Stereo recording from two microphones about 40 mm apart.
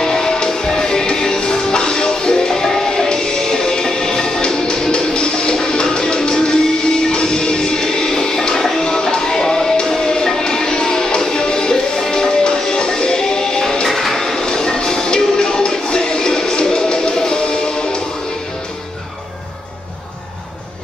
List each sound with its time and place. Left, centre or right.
0.0 s music: centre